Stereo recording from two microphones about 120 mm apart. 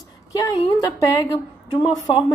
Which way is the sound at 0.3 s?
30° left (ahead or behind).